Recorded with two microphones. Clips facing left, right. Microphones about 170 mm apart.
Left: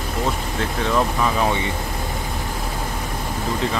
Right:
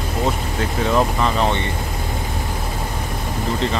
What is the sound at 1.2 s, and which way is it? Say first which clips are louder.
Speech: right 1 dB; 5° left (ahead or behind).